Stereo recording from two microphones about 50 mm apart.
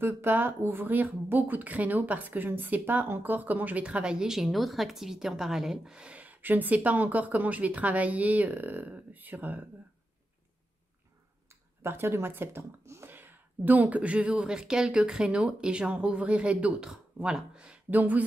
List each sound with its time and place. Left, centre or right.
0.0 s speech: right
3.8 s a woman's voice: centre
5.9 s speech: right
6.2 s speech: right
11.8 s speech: right
12.8 s whispering: right
13.1 s speech: right
16.8 s speech: centre
17.8 s speech: right